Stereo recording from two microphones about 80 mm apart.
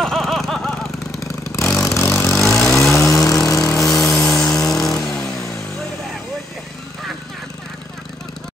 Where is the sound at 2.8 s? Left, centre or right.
Left.